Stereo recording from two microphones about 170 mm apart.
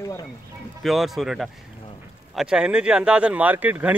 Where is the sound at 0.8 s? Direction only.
Centre (ahead or behind).